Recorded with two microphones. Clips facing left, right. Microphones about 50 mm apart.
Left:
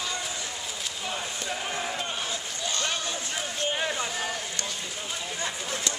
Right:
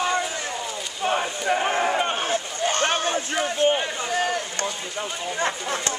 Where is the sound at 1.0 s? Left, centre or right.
Right.